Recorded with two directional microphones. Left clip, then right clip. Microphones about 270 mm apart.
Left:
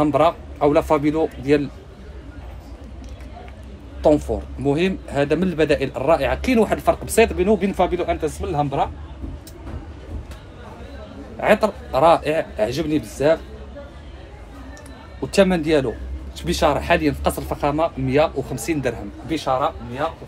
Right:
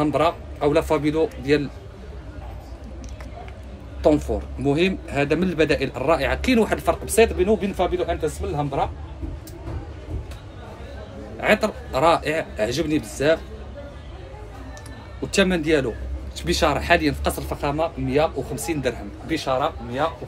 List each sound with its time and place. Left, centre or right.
0.0 s speech: centre
4.0 s speech: centre; by 8.8 s left
11.3 s speech: centre
15.3 s speech: centre